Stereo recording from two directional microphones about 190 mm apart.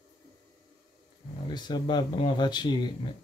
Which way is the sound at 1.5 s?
25° left (ahead or behind).